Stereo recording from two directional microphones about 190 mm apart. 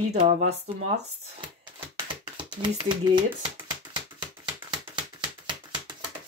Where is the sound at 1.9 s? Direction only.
25° right (ahead or behind).